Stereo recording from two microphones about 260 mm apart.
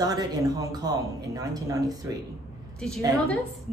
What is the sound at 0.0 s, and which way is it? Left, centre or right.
Speech, centre.